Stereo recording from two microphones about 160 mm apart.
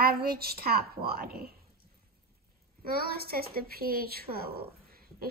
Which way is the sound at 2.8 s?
70° right (ahead or behind).